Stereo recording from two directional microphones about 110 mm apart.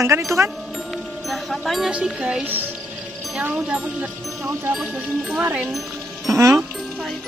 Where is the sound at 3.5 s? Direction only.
10° right (ahead or behind).